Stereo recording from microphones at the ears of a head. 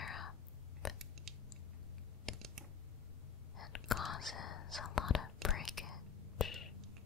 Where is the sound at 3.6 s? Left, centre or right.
Left.